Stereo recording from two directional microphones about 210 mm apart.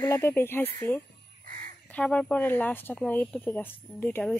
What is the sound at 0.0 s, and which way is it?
Speech, 10° left (ahead or behind).